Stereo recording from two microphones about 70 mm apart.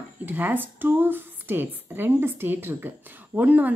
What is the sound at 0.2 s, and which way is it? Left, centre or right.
A woman's voice, right.